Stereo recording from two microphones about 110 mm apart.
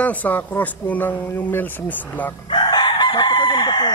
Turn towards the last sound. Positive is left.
turn(degrees=40)  # may be behind; listen again after turning